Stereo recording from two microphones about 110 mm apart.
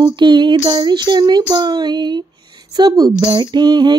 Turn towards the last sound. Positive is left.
turn(degrees=-40)  # may be behind; listen again after turning